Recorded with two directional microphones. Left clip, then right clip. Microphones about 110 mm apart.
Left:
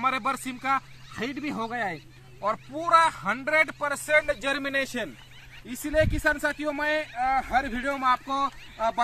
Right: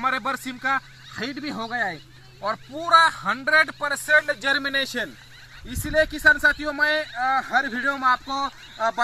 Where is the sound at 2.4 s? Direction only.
10° right (ahead or behind).